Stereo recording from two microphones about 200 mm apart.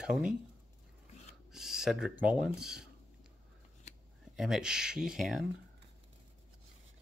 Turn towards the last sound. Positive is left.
turn(degrees=0)  # may be behind; listen again after turning